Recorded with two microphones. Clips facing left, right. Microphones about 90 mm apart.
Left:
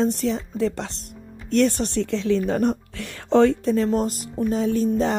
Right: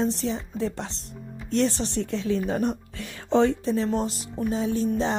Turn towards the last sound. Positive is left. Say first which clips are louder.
# left 4 dB
turn(degrees=55)  # may be behind; listen again after turning